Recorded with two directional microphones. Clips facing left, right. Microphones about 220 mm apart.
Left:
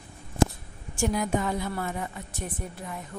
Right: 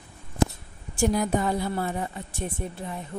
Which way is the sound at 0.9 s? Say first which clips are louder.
Right 3 dB; 35° right (ahead or behind).